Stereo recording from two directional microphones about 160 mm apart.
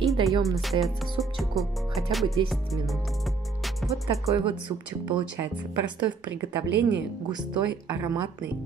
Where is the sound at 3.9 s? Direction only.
20° right (ahead or behind).